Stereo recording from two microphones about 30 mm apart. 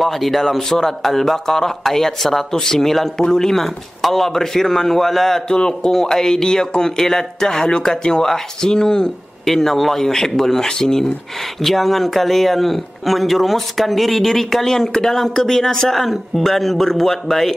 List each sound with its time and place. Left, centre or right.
0.0 s speech: centre
0.6 s speech: centre
5.5 s speech: left
9.5 s speech: centre
16.0 s speech: centre